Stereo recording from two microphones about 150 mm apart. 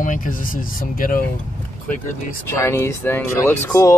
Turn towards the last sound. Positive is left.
turn(degrees=20)  # may be behind; listen again after turning